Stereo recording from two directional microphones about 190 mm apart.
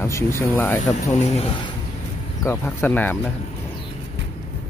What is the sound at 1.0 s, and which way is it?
Speech, 35° left (ahead or behind).